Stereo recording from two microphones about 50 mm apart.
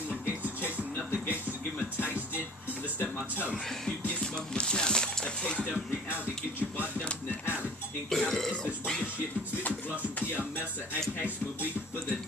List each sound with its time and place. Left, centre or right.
0.1 s music: right
4.2 s music: centre
7.0 s music: left
8.1 s burping: centre